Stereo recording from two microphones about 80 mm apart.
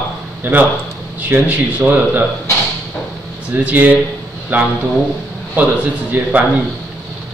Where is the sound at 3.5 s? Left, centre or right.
Centre.